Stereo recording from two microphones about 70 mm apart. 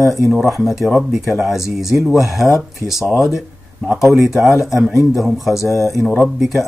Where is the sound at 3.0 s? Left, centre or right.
Left.